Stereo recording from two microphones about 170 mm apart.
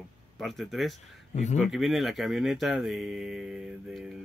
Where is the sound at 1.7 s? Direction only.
Centre (ahead or behind).